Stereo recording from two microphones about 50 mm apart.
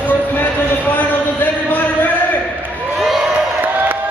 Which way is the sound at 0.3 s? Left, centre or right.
Left.